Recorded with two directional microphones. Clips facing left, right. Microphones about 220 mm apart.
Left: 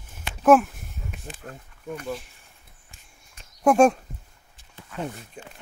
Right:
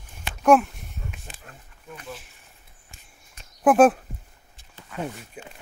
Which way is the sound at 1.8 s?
50° left (ahead or behind).